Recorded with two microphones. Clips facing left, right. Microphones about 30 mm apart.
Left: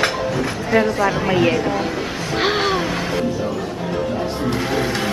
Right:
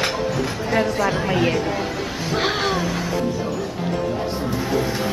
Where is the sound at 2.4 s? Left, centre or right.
Centre.